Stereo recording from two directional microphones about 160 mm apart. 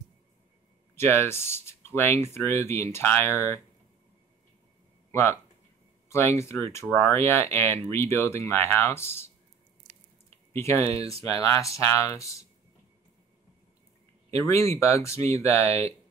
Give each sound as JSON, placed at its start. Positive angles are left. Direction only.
{"t": 0.9, "sound": "speech", "side_deg": 15}
{"t": 5.1, "sound": "speech", "side_deg": 15}
{"t": 10.5, "sound": "speech", "side_deg": 15}
{"t": 14.3, "sound": "speech", "side_deg": 20}